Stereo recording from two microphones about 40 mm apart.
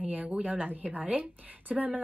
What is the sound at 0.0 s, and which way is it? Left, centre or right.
A woman's voice, right.